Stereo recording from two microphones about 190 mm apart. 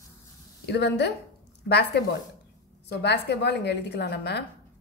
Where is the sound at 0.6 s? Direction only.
60° left (ahead or behind).